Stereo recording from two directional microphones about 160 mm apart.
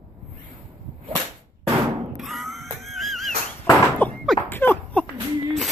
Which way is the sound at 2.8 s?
Centre (ahead or behind).